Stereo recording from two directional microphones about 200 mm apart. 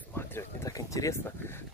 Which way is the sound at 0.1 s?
10° left (ahead or behind).